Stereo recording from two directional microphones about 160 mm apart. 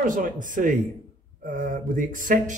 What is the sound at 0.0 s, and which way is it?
Speech, 55° right (ahead or behind).